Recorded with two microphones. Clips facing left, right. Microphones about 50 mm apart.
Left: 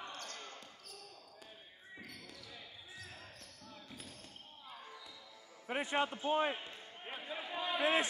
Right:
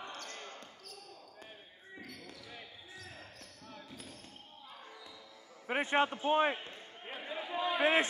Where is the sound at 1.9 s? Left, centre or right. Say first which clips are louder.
Right 3 dB; centre.